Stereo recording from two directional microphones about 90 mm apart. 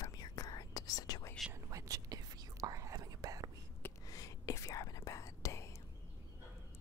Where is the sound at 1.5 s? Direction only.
40° right (ahead or behind).